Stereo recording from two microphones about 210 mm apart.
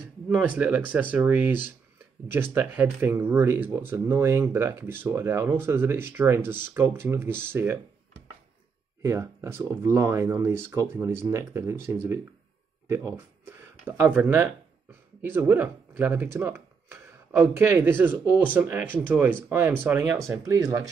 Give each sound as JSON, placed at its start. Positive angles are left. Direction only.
{"t": 0.3, "sound": "speech", "side_deg": -5}
{"t": 9.0, "sound": "speech", "side_deg": -15}